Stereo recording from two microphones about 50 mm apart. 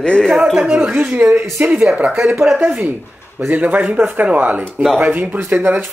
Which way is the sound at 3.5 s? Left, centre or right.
Right.